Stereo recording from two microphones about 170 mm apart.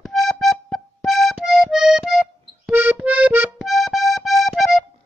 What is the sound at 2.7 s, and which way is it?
Accordion, 10° right (ahead or behind).